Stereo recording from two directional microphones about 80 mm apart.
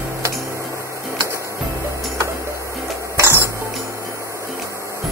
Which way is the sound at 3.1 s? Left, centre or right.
Right.